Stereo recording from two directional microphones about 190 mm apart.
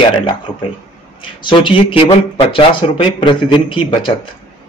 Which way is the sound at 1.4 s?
25° left (ahead or behind).